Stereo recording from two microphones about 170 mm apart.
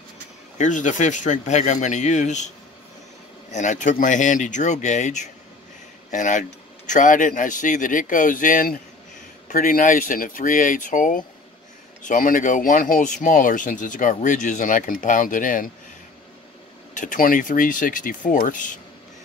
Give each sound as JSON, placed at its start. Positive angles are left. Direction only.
{"t": 0.6, "sound": "speech", "side_deg": 45}
{"t": 3.5, "sound": "speech", "side_deg": 45}
{"t": 16.9, "sound": "speech", "side_deg": 50}